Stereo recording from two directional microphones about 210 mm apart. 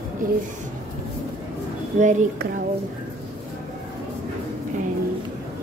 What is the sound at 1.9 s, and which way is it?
Speech, 35° right (ahead or behind).